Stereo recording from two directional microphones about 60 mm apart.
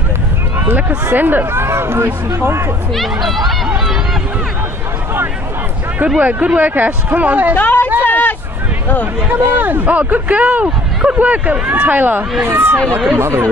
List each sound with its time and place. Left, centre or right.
1.1 s speech: right
2.9 s speech: centre
6.0 s speech: right
7.5 s speech: left
8.0 s a sound: left
9.3 s speech: right